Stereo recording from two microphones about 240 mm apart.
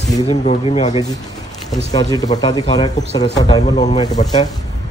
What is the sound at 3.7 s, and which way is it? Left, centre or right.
Speech, left.